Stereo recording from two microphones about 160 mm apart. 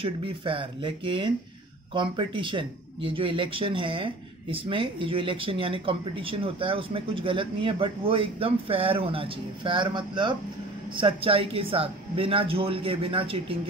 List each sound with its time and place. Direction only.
0.0 s speech: 35° right (ahead or behind)